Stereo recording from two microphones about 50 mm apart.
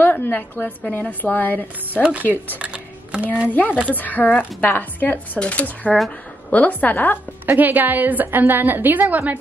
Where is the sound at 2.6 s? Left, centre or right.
Right.